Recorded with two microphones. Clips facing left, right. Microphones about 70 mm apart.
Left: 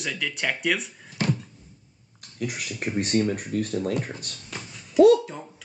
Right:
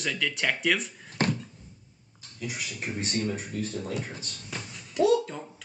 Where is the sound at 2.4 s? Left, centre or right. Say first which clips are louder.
Left 5 dB; left.